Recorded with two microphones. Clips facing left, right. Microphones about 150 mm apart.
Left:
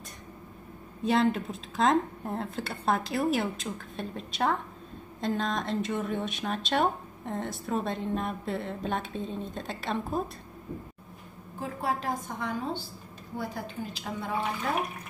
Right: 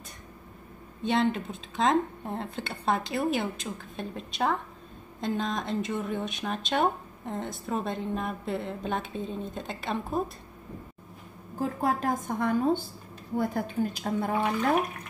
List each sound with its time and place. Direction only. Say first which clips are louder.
1.0 s speech: left 1 dB; centre (ahead or behind)
11.6 s a woman's voice: right 4 dB; 45° right (ahead or behind)